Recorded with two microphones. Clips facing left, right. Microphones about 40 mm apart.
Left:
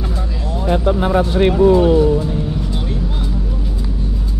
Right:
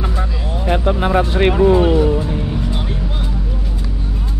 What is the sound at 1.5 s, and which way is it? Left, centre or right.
Speech, right.